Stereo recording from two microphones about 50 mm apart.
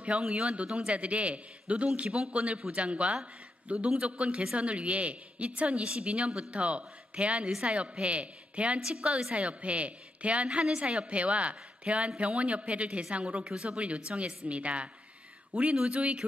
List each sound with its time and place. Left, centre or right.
0.2 s a woman's voice: right